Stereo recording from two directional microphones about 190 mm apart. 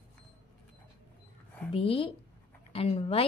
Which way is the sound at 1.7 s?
30° left (ahead or behind).